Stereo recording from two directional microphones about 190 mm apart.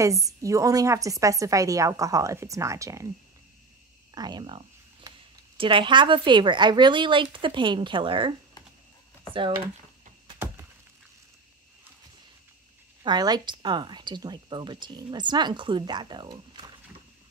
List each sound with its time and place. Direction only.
0.0 s a woman's voice: 15° right (ahead or behind)
4.1 s a sound: 20° right (ahead or behind)
5.6 s speech: 25° right (ahead or behind)
13.0 s speech: 20° right (ahead or behind)